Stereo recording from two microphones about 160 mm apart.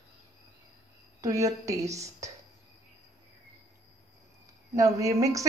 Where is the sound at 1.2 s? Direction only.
20° right (ahead or behind).